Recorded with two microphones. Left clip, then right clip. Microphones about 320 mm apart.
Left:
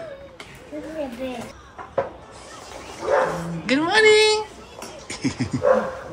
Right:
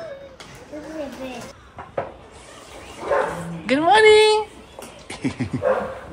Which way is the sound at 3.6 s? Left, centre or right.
Centre.